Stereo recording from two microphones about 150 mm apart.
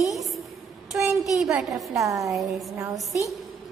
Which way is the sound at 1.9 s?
20° right (ahead or behind).